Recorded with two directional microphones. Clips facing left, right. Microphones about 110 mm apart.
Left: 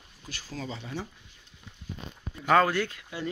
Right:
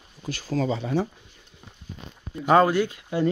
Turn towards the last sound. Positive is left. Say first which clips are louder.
# right 5 dB
turn(degrees=-15)  # may be behind; listen again after turning